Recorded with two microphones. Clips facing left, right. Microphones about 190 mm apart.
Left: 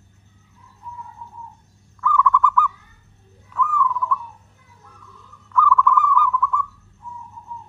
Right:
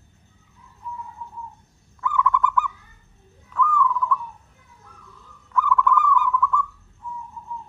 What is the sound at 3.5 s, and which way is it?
Bird, 5° left (ahead or behind).